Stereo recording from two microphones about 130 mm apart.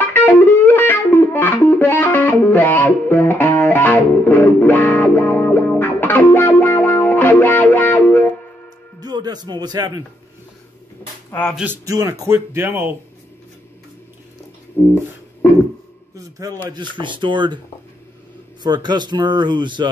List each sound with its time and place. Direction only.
0.1 s music: 15° left (ahead or behind)
9.0 s speech: 30° right (ahead or behind)
11.2 s speech: 10° left (ahead or behind)
11.8 s speech: 25° right (ahead or behind)
14.8 s beatboxing: 15° left (ahead or behind)
16.2 s speech: 25° right (ahead or behind)
17.0 s speech: 40° right (ahead or behind)
18.6 s speech: 35° right (ahead or behind)